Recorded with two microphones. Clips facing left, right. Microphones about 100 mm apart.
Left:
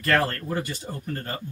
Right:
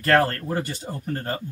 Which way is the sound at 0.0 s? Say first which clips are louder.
Right 4 dB; 40° right (ahead or behind).